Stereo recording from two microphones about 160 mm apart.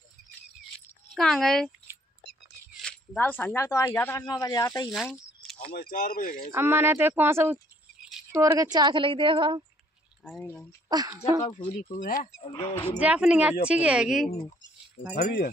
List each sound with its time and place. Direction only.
1.1 s speech: centre (ahead or behind)
2.8 s speech: 5° left (ahead or behind); by 4.8 s 25° left (ahead or behind)
4.9 s a sound: centre (ahead or behind)
5.7 s speech: 65° left (ahead or behind)
6.5 s a woman's voice: 15° right (ahead or behind); by 9.6 s 30° right (ahead or behind)
10.4 s speech: 15° left (ahead or behind)
10.9 s speech: 25° right (ahead or behind)
11.7 s speech: 60° left (ahead or behind)
12.5 s speech: 35° left (ahead or behind)
13.0 s speech: 5° right (ahead or behind)
15.1 s speech: 70° left (ahead or behind)